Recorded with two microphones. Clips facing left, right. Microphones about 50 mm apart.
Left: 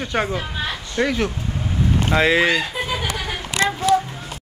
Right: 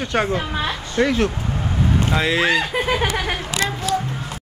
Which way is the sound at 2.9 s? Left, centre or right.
Right.